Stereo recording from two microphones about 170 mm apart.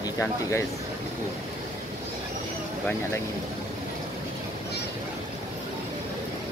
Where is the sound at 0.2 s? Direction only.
15° left (ahead or behind).